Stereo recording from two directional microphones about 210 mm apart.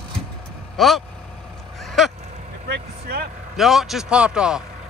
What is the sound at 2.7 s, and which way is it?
Speech, 45° right (ahead or behind).